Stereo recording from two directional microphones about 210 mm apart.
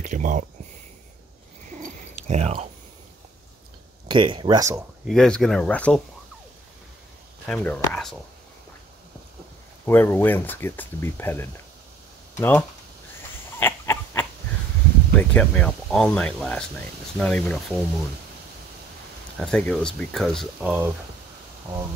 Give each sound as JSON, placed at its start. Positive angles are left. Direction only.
{"t": 0.0, "sound": "speech", "side_deg": -35}
{"t": 1.8, "sound": "cat", "side_deg": -35}
{"t": 4.1, "sound": "speech", "side_deg": -20}
{"t": 5.0, "sound": "speech", "side_deg": 5}
{"t": 7.4, "sound": "speech", "side_deg": 5}
{"t": 9.8, "sound": "speech", "side_deg": 10}
{"t": 13.6, "sound": "a sound", "side_deg": 10}
{"t": 15.1, "sound": "speech", "side_deg": 5}
{"t": 19.3, "sound": "speech", "side_deg": 5}